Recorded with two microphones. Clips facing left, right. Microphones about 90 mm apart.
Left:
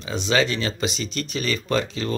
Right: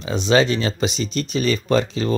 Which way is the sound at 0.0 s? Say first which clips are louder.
Right 5 dB; 25° right (ahead or behind).